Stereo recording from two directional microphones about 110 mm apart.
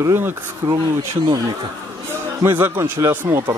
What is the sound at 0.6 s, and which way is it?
Speech, 50° right (ahead or behind).